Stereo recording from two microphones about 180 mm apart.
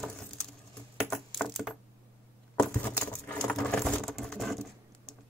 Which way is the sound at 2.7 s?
10° left (ahead or behind).